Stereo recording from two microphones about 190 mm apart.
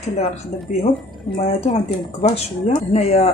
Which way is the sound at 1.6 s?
35° left (ahead or behind).